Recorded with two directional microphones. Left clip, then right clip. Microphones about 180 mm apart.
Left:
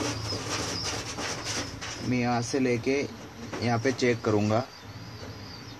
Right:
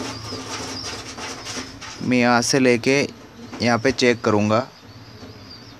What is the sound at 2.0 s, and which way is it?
A man's voice, 40° right (ahead or behind).